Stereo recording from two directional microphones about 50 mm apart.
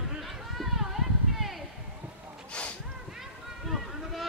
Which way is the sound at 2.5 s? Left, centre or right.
Left.